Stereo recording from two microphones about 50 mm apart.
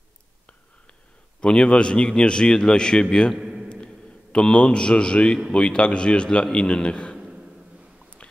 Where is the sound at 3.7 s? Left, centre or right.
Centre.